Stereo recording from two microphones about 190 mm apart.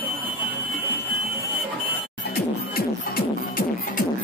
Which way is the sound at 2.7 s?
50° left (ahead or behind).